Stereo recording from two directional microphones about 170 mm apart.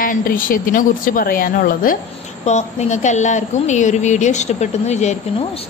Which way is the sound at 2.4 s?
40° left (ahead or behind).